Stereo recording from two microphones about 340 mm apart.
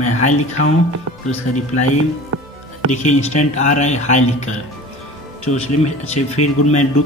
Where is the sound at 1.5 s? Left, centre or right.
Left.